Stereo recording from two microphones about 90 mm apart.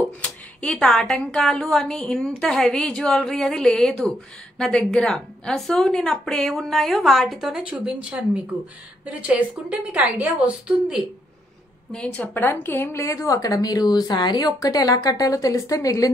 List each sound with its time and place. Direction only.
0.2 s a woman's voice: 10° left (ahead or behind); by 11.0 s 15° right (ahead or behind)
11.9 s a woman's voice: 15° left (ahead or behind); by 16.1 s 40° left (ahead or behind)